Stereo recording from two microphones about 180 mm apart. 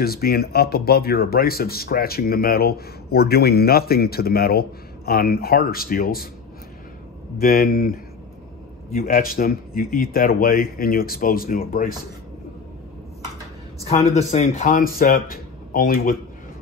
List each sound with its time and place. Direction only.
0.0 s speech: 55° left (ahead or behind)
7.3 s speech: 55° left (ahead or behind)
13.8 s speech: 35° left (ahead or behind)